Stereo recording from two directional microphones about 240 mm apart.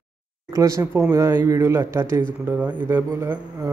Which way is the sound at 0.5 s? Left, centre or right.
Centre.